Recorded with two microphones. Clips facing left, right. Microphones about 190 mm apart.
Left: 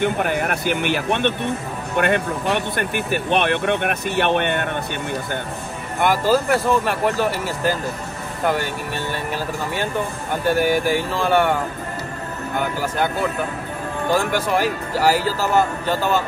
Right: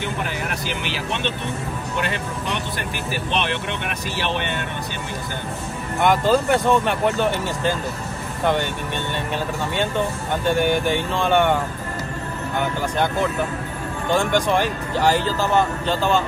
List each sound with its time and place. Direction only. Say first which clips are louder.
0.0 s speech: left 7 dB; 55° left (ahead or behind)
5.9 s speech: even; 5° left (ahead or behind)
10.4 s speech: left 1 dB; 5° left (ahead or behind)
12.5 s speech: even; 5° left (ahead or behind)